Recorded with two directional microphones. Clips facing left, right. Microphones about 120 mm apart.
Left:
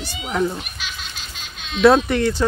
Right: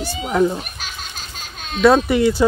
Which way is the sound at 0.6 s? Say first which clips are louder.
Right 1 dB; 45° right (ahead or behind).